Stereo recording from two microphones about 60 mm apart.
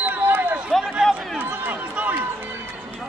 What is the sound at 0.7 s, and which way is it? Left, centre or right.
Run, centre.